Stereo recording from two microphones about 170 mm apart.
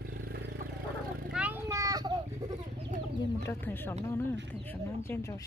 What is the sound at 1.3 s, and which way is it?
Vehicle, 5° right (ahead or behind).